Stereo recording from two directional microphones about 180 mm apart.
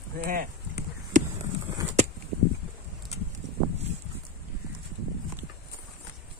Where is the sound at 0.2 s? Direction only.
50° right (ahead or behind).